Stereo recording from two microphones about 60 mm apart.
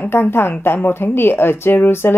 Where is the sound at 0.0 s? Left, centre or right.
Left.